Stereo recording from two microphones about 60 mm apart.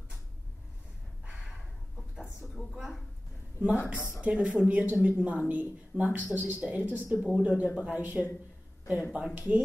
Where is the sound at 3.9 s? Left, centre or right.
Left.